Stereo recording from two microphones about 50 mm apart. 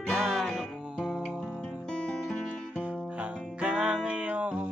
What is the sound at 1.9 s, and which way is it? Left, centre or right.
Music, centre.